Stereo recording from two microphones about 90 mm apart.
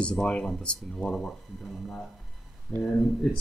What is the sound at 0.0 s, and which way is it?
Speech, 10° left (ahead or behind).